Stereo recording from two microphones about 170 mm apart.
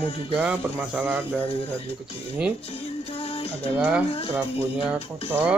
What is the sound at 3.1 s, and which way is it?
Music, 35° left (ahead or behind).